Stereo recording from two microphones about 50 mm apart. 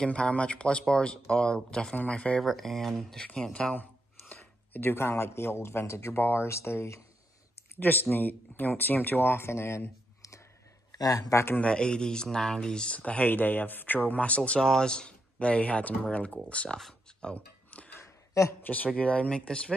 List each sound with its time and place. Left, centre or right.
0.0 s speech: centre
2.4 s speech: centre
3.6 s speech: centre
4.9 s a man's voice: left
7.8 s speech: left
11.5 s speech: left
12.9 s speech: left
14.6 s speech: centre
17.7 s a sound: left
18.6 s speech: left